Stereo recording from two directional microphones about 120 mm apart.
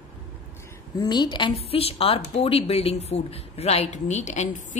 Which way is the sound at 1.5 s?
55° left (ahead or behind).